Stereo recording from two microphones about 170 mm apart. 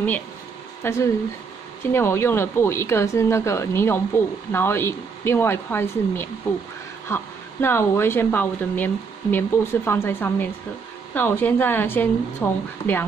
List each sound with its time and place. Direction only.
0.8 s speech: 15° left (ahead or behind)